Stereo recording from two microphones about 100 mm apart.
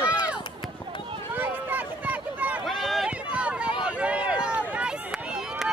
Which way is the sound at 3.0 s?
10° right (ahead or behind).